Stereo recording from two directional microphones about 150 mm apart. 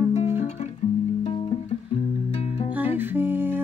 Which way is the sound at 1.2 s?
40° left (ahead or behind).